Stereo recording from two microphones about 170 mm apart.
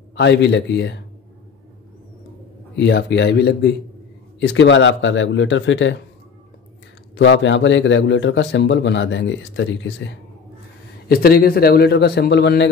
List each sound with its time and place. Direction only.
0.1 s a man's voice: 90° left
2.7 s speech: 85° left
4.4 s a man's voice: 90° left
7.2 s a man's voice: 90° left
11.1 s a man's voice: 60° left (ahead or behind); by 12.6 s 90° left